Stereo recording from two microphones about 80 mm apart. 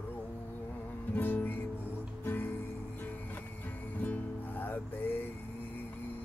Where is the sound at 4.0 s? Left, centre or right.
Left.